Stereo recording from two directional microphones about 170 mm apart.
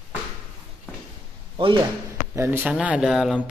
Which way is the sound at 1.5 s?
30° right (ahead or behind).